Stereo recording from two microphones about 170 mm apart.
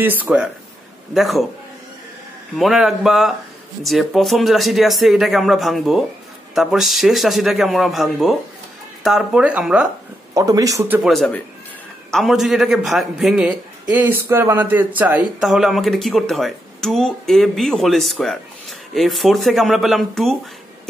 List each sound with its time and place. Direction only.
0.0 s speech: 10° right (ahead or behind)
2.5 s speech: centre (ahead or behind)
10.3 s speech: 20° right (ahead or behind)
11.0 s speech: centre (ahead or behind)